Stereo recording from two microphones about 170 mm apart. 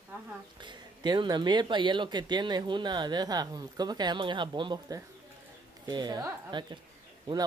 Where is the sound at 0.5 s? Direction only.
25° right (ahead or behind).